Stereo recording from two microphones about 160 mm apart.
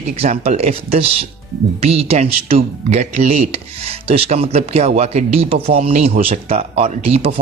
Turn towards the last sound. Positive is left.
turn(degrees=-40)  # may be behind; listen again after turning